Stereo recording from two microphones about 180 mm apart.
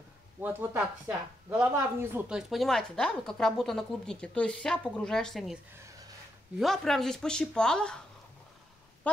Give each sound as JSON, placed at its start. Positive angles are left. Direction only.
{"t": 0.4, "sound": "speech", "side_deg": -10}
{"t": 5.9, "sound": "a sound", "side_deg": -20}
{"t": 6.6, "sound": "speech", "side_deg": 0}